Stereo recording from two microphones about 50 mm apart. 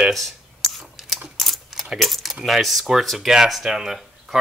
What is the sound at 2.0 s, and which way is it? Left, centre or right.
Speech, centre.